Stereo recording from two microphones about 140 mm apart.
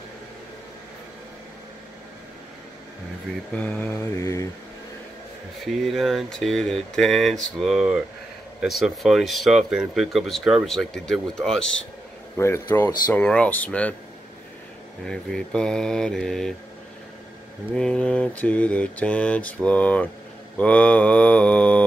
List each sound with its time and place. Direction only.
3.5 s mantra: 10° left (ahead or behind)
5.7 s speech: centre (ahead or behind)
12.4 s mantra: 20° left (ahead or behind)
15.0 s speech: 5° left (ahead or behind)
17.7 s mantra: 5° left (ahead or behind)